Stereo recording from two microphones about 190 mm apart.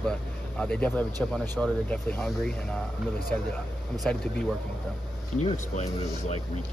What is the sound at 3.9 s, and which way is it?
Speech, centre (ahead or behind).